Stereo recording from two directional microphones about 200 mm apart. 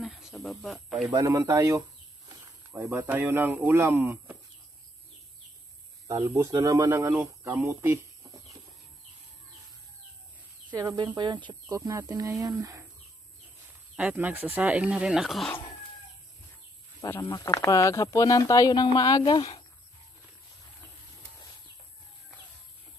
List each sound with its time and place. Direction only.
0.0 s speech: centre (ahead or behind)
1.1 s speech: 15° right (ahead or behind)
6.0 s speech: 15° right (ahead or behind)
10.7 s speech: 20° right (ahead or behind)
13.9 s speech: 10° right (ahead or behind)
17.0 s speech: 15° left (ahead or behind)